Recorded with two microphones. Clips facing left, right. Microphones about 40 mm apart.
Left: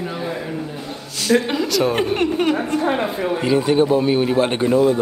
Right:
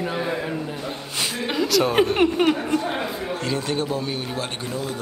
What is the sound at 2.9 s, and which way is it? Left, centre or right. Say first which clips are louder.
Speech: left 6 dB; left.